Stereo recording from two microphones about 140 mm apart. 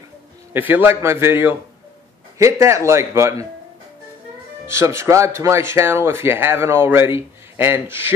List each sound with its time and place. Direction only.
0.5 s a man's voice: 15° right (ahead or behind)
4.6 s speech: 20° right (ahead or behind)